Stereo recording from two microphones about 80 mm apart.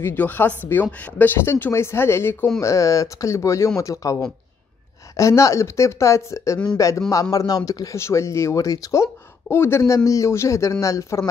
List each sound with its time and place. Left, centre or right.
0.0 s speech: left